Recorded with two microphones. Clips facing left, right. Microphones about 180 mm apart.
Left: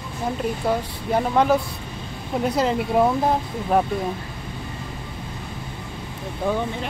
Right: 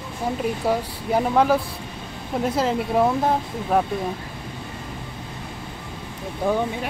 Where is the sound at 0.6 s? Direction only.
5° right (ahead or behind).